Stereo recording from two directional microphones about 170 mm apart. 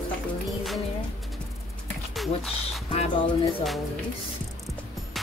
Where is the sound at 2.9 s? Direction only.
35° left (ahead or behind).